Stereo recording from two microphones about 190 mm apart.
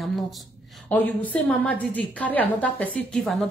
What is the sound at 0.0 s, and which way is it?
A woman's voice, centre (ahead or behind).